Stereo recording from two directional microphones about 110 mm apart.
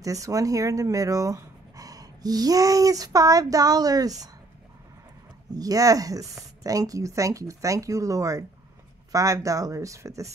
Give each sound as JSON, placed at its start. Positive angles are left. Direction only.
{"t": 0.0, "sound": "speech", "side_deg": -30}
{"t": 5.5, "sound": "speech", "side_deg": -35}